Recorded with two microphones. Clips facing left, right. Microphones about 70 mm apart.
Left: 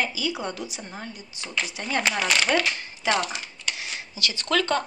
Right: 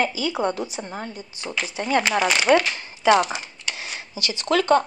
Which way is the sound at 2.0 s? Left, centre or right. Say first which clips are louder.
Right 4 dB; centre.